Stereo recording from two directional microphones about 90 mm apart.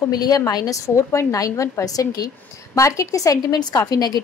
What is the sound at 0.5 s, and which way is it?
Speech, 40° left (ahead or behind).